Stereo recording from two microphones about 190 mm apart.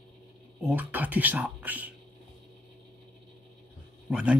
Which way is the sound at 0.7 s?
10° right (ahead or behind).